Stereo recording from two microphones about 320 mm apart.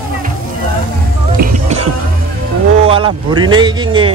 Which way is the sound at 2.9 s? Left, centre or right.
Centre.